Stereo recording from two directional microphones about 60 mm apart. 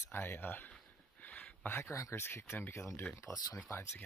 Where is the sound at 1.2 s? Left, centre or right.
Left.